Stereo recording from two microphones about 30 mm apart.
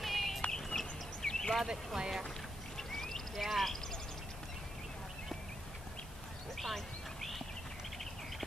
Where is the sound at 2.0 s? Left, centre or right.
Centre.